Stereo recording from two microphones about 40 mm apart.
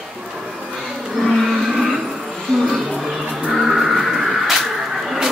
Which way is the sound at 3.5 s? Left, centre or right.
Centre.